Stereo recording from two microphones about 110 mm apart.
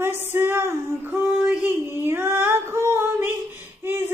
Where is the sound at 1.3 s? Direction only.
15° right (ahead or behind).